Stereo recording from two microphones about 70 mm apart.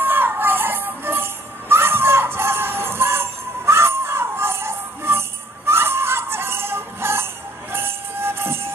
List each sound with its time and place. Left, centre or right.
0.0 s music: right